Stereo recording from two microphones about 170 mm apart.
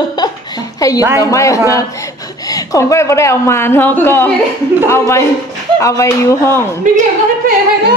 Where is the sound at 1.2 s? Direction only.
20° left (ahead or behind).